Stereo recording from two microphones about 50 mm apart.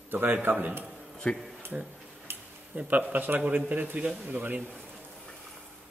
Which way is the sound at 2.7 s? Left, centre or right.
Right.